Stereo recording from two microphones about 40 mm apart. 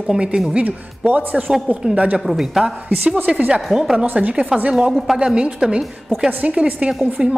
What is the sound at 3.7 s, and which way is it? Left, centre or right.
Speech, centre.